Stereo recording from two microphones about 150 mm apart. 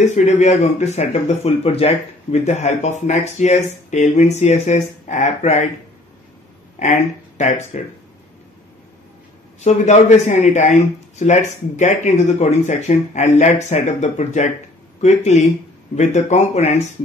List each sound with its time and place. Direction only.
0.0 s speech: 50° left (ahead or behind)
6.8 s speech: 50° left (ahead or behind)
9.6 s speech: 50° left (ahead or behind)